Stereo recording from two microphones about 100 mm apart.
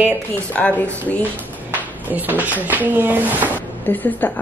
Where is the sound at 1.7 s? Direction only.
20° right (ahead or behind).